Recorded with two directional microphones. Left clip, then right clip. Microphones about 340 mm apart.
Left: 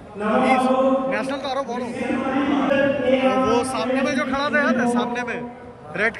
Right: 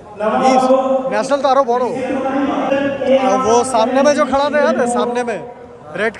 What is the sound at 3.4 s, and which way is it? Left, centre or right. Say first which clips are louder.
Speech: right 8 dB; centre.